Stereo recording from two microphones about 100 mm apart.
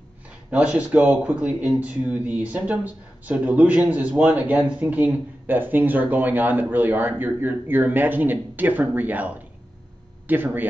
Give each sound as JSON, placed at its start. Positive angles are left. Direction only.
{"t": 0.5, "sound": "speech", "side_deg": -15}